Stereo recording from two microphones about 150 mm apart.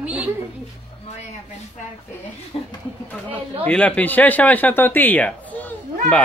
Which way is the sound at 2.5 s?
35° left (ahead or behind).